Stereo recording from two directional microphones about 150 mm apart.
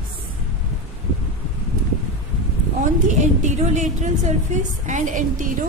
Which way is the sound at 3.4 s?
55° right (ahead or behind).